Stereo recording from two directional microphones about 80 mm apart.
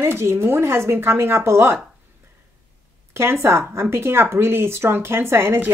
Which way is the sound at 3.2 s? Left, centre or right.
Right.